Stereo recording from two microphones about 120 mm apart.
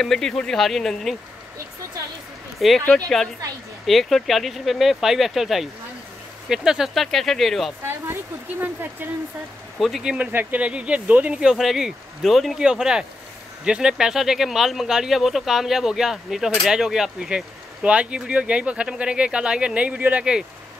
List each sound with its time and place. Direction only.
0.0 s speech: 5° left (ahead or behind)
2.6 s speech: centre (ahead or behind)
3.8 s speech: centre (ahead or behind)
7.8 s speech: 20° right (ahead or behind)
9.8 s speech: centre (ahead or behind)